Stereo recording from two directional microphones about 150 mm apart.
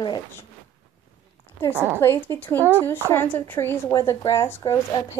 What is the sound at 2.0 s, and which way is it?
Speech, 15° left (ahead or behind).